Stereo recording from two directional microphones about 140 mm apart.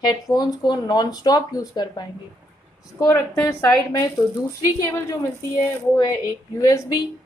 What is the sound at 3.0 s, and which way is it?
A woman's voice, 20° left (ahead or behind).